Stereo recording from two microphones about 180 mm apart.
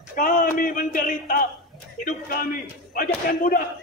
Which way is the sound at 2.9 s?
55° left (ahead or behind).